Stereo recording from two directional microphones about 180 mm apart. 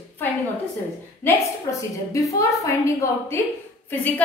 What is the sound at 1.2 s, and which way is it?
A woman's voice, 15° left (ahead or behind).